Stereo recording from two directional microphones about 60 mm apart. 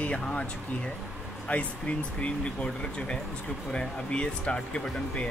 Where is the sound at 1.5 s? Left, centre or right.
Left.